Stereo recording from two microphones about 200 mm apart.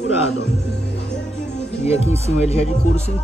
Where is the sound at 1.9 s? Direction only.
30° left (ahead or behind).